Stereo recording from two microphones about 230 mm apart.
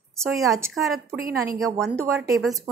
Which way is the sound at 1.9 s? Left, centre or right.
Centre.